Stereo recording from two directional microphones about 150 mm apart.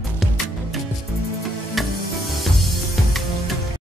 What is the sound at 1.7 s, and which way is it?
Music, centre (ahead or behind).